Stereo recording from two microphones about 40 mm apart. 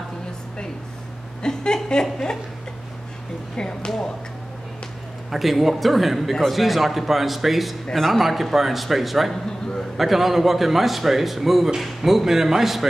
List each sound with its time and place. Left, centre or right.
1.4 s a sound: centre
3.5 s speech: left
5.3 s a man's voice: centre